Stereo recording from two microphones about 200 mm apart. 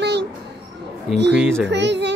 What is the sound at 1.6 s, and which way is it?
Child singing, 60° right (ahead or behind).